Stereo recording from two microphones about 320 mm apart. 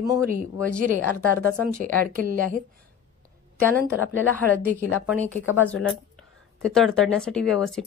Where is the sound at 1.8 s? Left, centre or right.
Right.